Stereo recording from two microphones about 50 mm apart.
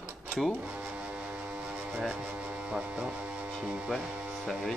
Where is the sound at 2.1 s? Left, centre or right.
Right.